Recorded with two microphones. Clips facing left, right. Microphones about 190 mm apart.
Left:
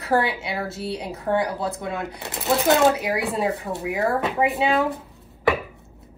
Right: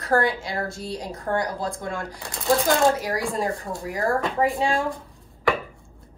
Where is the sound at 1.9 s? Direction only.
20° left (ahead or behind).